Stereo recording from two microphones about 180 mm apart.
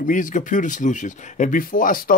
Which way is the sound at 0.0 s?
45° left (ahead or behind).